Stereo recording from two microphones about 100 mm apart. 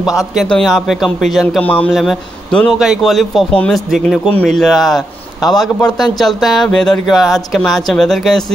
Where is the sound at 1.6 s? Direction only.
15° left (ahead or behind).